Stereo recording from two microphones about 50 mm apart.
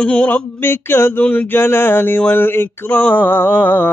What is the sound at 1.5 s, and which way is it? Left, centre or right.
Speech, left.